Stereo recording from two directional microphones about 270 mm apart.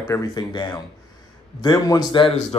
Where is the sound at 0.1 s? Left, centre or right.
Centre.